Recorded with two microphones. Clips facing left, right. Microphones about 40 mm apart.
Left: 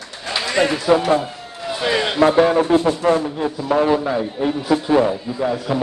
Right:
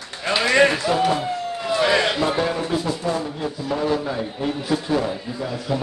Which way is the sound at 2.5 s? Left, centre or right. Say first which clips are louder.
Left 8 dB; left.